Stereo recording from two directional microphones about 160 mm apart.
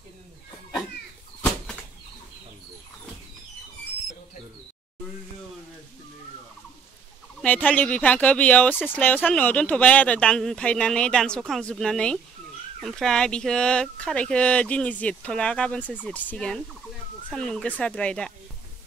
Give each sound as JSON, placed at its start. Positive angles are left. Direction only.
{"t": 7.4, "sound": "speech", "side_deg": 10}